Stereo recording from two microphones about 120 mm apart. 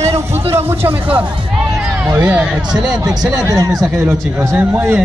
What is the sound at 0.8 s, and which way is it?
A man's voice, 15° right (ahead or behind).